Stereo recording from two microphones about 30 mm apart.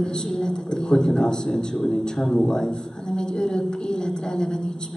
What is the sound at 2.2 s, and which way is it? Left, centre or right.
A woman's voice, centre.